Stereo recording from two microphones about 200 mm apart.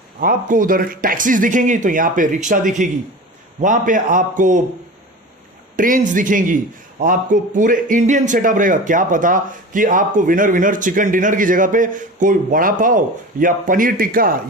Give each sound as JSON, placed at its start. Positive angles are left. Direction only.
{"t": 0.2, "sound": "a man's voice", "side_deg": -45}
{"t": 5.8, "sound": "a man's voice", "side_deg": -40}